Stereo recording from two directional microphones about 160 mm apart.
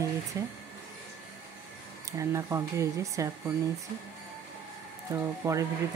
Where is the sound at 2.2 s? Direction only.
20° right (ahead or behind).